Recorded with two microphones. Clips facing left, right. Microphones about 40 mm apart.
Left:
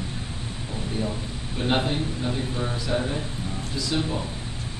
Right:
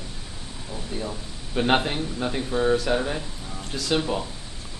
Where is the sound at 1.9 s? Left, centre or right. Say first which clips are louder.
Even; right.